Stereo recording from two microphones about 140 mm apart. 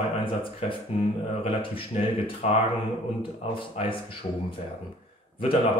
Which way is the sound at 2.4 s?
50° left (ahead or behind).